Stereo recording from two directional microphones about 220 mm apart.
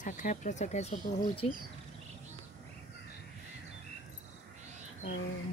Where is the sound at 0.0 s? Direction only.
35° left (ahead or behind).